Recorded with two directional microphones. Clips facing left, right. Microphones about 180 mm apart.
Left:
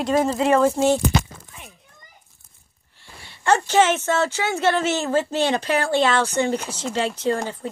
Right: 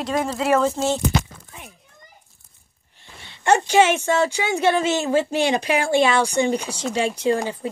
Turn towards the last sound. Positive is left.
turn(degrees=-15)  # may be behind; listen again after turning